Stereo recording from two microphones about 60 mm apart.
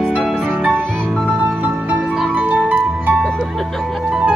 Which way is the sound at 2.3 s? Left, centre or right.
Right.